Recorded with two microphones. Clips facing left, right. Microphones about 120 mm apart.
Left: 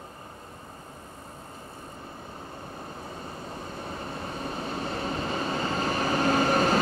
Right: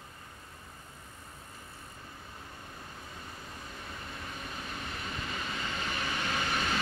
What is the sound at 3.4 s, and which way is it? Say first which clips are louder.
Vehicle: left 8 dB; 35° left (ahead or behind).